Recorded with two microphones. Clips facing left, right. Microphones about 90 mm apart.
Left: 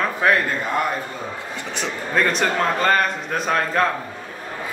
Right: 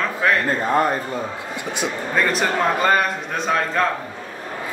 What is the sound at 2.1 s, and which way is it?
Speech, 5° right (ahead or behind).